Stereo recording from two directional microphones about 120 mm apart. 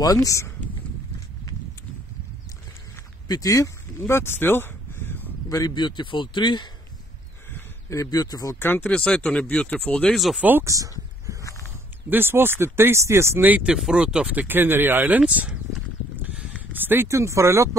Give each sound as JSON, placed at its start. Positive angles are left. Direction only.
{"t": 0.0, "sound": "speech", "side_deg": 30}
{"t": 3.3, "sound": "speech", "side_deg": 30}
{"t": 4.1, "sound": "a sound", "side_deg": 20}
{"t": 5.5, "sound": "a man's voice", "side_deg": 35}
{"t": 7.5, "sound": "speech", "side_deg": 25}
{"t": 8.6, "sound": "speech", "side_deg": 15}
{"t": 10.1, "sound": "speech", "side_deg": 0}
{"t": 10.4, "sound": "speech", "side_deg": -15}
{"t": 10.7, "sound": "a sound", "side_deg": -25}
{"t": 11.4, "sound": "a sound", "side_deg": 25}
{"t": 12.1, "sound": "speech", "side_deg": -20}